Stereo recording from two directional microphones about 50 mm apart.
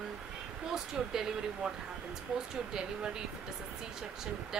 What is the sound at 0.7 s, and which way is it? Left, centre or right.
Speech, centre.